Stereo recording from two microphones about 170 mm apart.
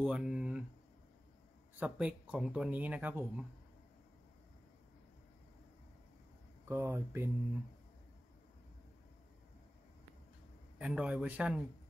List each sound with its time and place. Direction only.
0.0 s speech: 5° right (ahead or behind)
1.8 s speech: 10° right (ahead or behind)
6.6 s speech: 15° right (ahead or behind)
10.8 s speech: 5° right (ahead or behind)